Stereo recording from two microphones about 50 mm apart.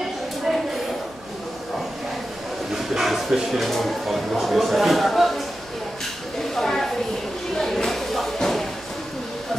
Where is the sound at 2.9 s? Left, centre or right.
Centre.